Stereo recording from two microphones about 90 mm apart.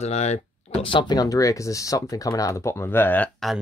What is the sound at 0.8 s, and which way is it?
Speech, 65° left (ahead or behind).